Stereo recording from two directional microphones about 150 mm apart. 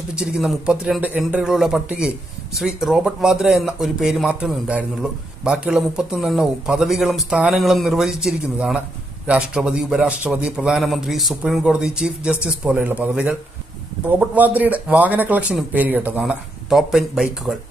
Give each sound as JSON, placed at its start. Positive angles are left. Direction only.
{"t": 0.1, "sound": "speech", "side_deg": -5}